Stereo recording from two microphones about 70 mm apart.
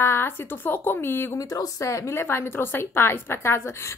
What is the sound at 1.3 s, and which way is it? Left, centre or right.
A woman's voice, left.